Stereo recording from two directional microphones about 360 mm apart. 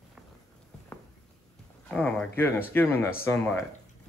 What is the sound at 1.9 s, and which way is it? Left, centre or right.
Speech, centre.